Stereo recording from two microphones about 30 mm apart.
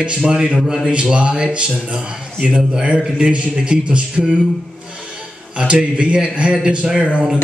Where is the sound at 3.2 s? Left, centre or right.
Right.